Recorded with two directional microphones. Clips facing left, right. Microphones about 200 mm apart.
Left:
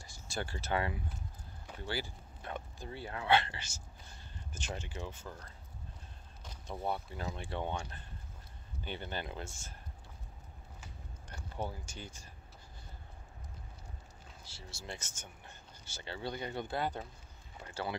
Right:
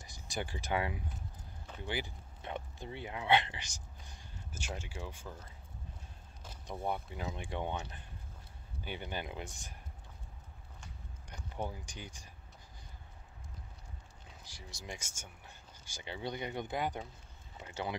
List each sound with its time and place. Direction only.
0.0 s speech: 15° right (ahead or behind)
6.4 s vehicle: 5° right (ahead or behind)
7.3 s speech: 15° right (ahead or behind)
11.2 s speech: 15° right (ahead or behind)
14.4 s speech: 15° right (ahead or behind)